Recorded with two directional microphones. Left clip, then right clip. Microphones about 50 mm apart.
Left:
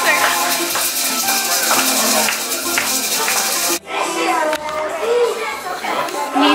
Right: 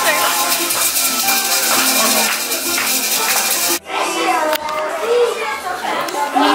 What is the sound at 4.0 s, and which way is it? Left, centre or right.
Music, centre.